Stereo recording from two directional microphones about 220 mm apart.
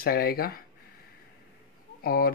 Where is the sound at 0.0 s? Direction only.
45° left (ahead or behind).